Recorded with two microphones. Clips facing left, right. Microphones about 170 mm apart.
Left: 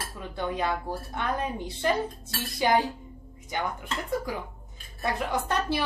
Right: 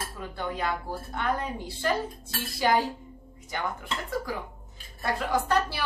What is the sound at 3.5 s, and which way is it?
A woman's voice, 20° left (ahead or behind).